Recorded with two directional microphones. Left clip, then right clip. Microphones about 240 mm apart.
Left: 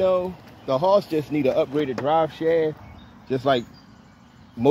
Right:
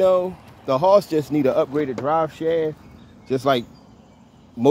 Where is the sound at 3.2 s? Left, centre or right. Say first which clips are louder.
Right 2 dB; centre.